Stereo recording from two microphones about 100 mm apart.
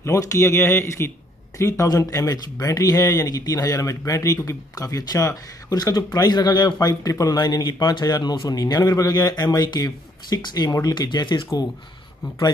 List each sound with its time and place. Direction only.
0.0 s a man's voice: 30° left (ahead or behind); by 11.6 s 50° left (ahead or behind)